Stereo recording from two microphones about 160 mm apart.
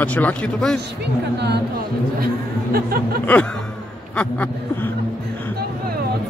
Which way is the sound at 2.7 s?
70° right (ahead or behind).